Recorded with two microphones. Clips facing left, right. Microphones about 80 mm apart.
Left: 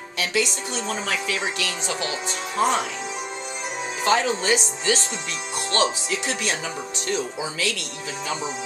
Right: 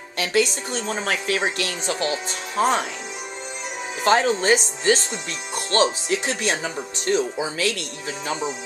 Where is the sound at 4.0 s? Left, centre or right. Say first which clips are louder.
Right 3 dB; right.